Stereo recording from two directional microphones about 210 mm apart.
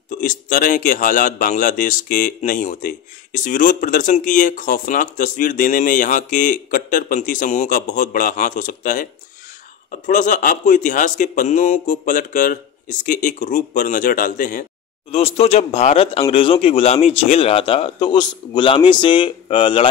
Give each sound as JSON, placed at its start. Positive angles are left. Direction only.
{"t": 0.1, "sound": "speech", "side_deg": 40}